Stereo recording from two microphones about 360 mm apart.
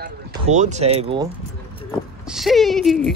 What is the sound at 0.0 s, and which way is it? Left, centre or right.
Speech, right.